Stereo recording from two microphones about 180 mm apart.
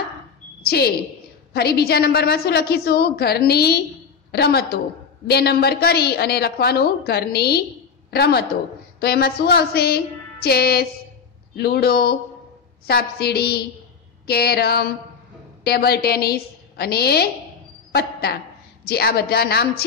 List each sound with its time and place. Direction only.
0.6 s a woman's voice: 60° left (ahead or behind)